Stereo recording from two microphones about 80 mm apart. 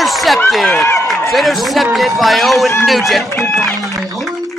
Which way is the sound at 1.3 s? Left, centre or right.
Centre.